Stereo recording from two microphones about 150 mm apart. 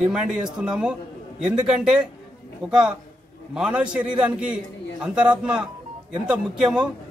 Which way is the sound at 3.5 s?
5° right (ahead or behind).